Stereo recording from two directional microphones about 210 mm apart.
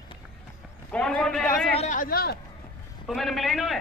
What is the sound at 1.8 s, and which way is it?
Speech, 40° left (ahead or behind).